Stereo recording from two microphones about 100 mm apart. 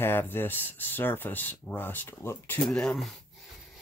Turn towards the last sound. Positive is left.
turn(degrees=5)  # may be behind; listen again after turning